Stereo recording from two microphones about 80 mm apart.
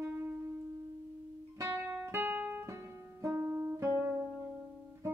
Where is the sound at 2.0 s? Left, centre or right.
Right.